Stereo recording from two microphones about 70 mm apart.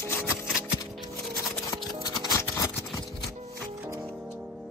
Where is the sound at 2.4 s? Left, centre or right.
Left.